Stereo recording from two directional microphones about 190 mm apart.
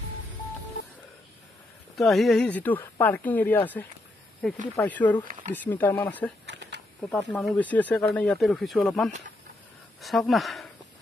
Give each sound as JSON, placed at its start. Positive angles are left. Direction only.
{"t": 2.0, "sound": "speech", "side_deg": 0}
{"t": 6.4, "sound": "a sound", "side_deg": -70}
{"t": 7.0, "sound": "speech", "side_deg": 5}